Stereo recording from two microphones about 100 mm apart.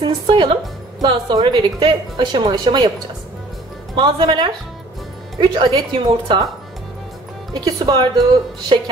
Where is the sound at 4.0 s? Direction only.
50° right (ahead or behind).